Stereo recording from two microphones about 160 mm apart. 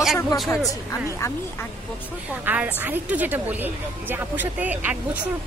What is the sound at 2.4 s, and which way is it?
A woman's voice, 10° right (ahead or behind).